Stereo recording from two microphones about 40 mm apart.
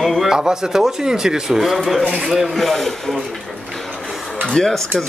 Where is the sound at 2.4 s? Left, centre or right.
Centre.